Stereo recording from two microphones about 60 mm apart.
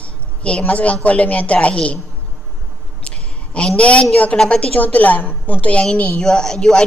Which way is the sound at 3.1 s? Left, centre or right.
Centre.